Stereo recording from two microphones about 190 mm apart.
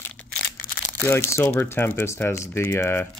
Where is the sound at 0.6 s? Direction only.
45° left (ahead or behind).